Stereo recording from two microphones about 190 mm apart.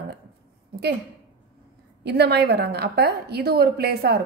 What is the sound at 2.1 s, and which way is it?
A woman's voice, 60° right (ahead or behind).